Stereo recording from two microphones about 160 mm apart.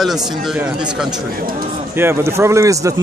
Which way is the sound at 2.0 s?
15° right (ahead or behind).